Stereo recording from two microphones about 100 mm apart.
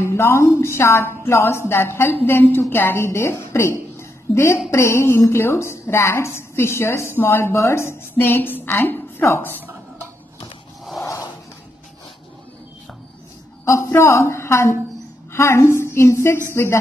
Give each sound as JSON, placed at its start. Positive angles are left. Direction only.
{"t": 0.0, "sound": "a woman's voice", "side_deg": 25}
{"t": 13.7, "sound": "a woman's voice", "side_deg": 25}